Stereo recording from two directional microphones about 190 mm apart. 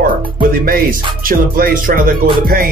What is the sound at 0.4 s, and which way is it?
Music, 50° right (ahead or behind).